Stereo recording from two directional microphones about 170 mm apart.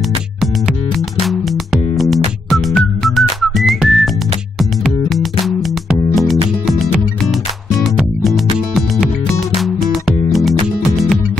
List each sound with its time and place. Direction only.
1.2 s music: centre (ahead or behind)